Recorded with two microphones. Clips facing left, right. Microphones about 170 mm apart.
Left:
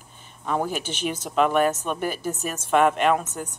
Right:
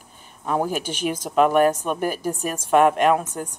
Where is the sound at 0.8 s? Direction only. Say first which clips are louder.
Right 3 dB; 10° right (ahead or behind).